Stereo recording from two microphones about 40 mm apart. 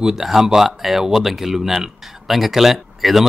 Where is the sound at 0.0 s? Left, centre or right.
Centre.